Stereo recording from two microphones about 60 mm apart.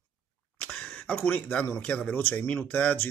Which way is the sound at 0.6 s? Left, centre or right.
Centre.